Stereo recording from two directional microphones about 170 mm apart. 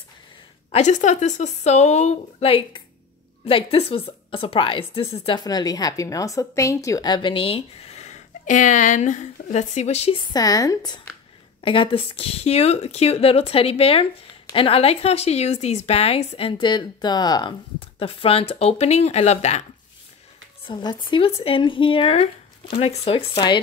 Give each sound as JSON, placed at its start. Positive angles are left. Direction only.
{"t": 0.7, "sound": "speech", "side_deg": 40}
{"t": 10.3, "sound": "speech", "side_deg": 20}
{"t": 20.6, "sound": "speech", "side_deg": 25}